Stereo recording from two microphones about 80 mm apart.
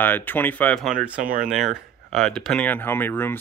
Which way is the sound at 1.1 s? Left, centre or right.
Centre.